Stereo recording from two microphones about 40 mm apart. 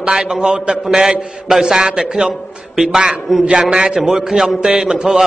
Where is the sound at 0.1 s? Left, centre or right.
Centre.